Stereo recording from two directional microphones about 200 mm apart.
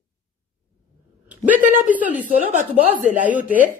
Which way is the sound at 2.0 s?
10° right (ahead or behind).